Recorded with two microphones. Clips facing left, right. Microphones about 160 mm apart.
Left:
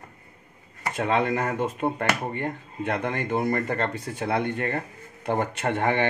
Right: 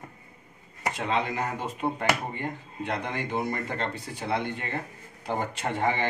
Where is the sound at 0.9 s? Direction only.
55° left (ahead or behind).